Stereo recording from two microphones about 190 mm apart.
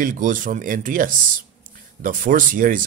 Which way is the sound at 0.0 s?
45° right (ahead or behind).